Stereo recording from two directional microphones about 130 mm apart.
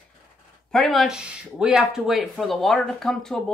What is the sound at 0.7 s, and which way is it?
Speech, 5° left (ahead or behind).